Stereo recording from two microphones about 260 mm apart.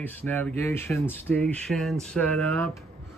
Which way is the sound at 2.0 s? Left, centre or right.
Centre.